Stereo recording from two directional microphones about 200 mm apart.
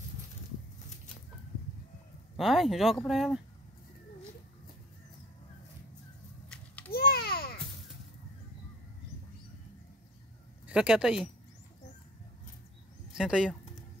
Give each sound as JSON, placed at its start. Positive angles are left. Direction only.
{"t": 2.3, "sound": "speech", "side_deg": 0}
{"t": 6.5, "sound": "a sound", "side_deg": 5}
{"t": 6.9, "sound": "babbling", "side_deg": 50}
{"t": 10.7, "sound": "speech", "side_deg": -5}
{"t": 13.1, "sound": "speech", "side_deg": -5}